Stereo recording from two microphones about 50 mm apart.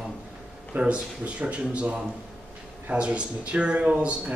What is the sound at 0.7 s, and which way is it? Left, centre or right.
Speech, right.